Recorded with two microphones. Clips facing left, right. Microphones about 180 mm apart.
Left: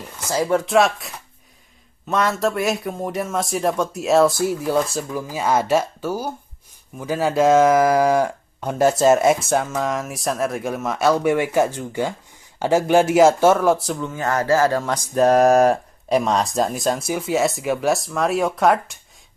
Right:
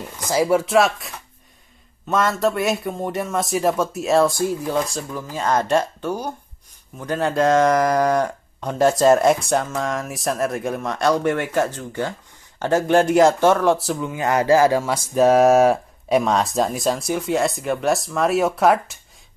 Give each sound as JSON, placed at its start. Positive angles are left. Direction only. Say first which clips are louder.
{"t": 0.3, "sound": "a man's voice", "louder": "right 1 dB", "side_deg": -10}